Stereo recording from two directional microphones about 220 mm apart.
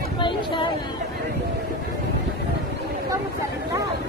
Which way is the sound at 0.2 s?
20° left (ahead or behind).